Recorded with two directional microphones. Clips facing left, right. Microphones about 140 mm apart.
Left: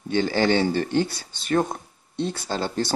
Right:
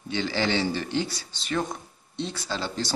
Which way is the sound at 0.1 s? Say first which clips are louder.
Left 6 dB; 50° left (ahead or behind).